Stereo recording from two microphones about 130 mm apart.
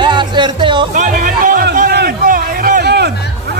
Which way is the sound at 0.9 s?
85° right.